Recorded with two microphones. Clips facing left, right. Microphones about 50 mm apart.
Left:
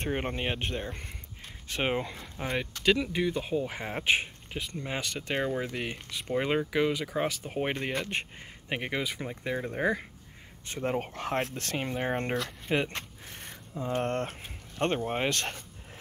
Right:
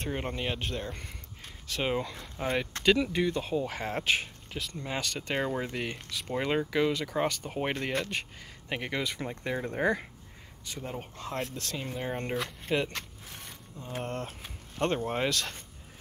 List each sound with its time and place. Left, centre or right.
0.0 s speech: left
2.1 s speech: centre
4.0 s speech: left
5.1 s speech: centre
10.8 s speech: left
11.3 s speech: left
12.7 s speech: left
13.3 s a sound: left
14.0 s speech: left
15.0 s speech: left